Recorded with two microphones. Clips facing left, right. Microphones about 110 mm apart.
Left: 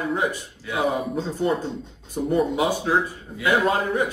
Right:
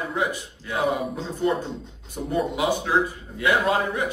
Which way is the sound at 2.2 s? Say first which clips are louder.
Left 6 dB; 15° left (ahead or behind).